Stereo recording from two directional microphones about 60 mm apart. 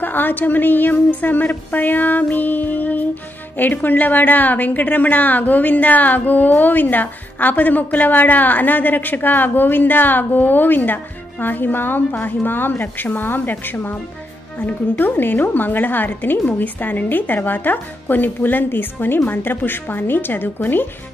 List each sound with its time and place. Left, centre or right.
0.0 s a woman's voice: left